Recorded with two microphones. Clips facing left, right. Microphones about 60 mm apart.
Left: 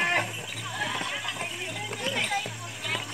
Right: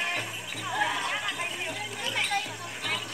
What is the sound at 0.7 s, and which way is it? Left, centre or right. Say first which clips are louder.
Music: right 3 dB; centre.